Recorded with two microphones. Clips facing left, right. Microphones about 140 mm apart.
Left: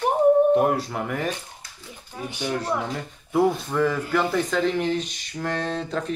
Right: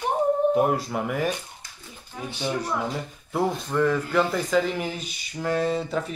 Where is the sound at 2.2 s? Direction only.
15° left (ahead or behind).